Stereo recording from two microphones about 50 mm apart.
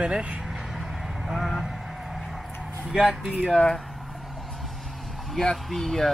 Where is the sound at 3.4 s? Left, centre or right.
Centre.